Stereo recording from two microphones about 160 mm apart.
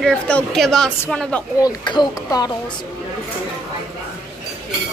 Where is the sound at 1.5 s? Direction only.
25° left (ahead or behind).